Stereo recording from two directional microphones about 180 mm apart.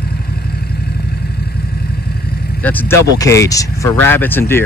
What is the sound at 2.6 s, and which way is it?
Speech, 10° left (ahead or behind).